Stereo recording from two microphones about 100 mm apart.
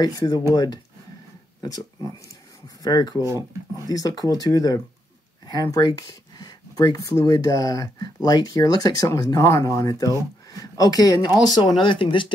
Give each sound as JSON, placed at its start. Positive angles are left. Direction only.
{"t": 0.0, "sound": "speech", "side_deg": 40}
{"t": 2.8, "sound": "speech", "side_deg": 40}
{"t": 3.2, "sound": "speech", "side_deg": -30}
{"t": 3.8, "sound": "speech", "side_deg": 40}
{"t": 11.8, "sound": "speech", "side_deg": 55}